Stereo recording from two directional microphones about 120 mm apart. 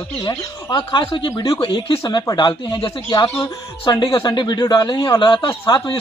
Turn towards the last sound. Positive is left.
turn(degrees=40)  # may be behind; listen again after turning